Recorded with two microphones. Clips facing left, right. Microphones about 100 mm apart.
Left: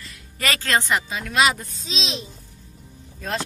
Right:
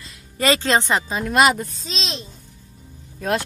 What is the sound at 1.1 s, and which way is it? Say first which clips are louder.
Speech: right 5 dB; 45° right (ahead or behind).